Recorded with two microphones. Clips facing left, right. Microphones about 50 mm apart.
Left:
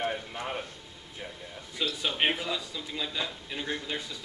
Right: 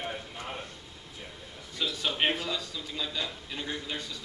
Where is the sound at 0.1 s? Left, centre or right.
Centre.